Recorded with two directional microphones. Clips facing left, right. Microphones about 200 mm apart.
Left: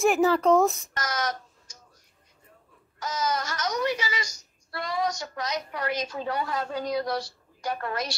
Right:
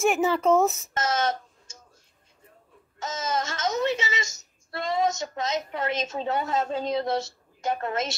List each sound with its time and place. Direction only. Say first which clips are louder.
0.0 s speech: left 1 dB; centre (ahead or behind)
0.9 s a sound: right 5 dB; 25° right (ahead or behind)
3.0 s a woman's voice: even; 25° right (ahead or behind)